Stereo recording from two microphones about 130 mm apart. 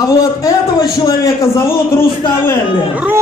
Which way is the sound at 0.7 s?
30° left (ahead or behind).